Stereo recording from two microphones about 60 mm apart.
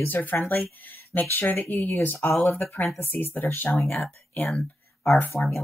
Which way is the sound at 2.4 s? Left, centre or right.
Left.